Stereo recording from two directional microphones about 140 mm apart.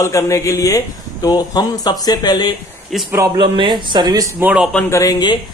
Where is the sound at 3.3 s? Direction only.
35° right (ahead or behind).